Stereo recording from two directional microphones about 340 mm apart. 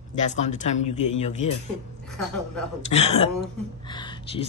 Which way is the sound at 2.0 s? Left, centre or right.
Centre.